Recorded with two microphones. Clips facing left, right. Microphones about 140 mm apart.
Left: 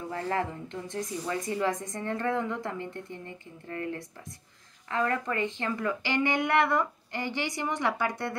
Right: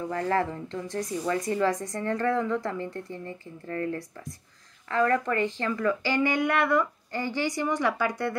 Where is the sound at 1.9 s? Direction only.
25° left (ahead or behind).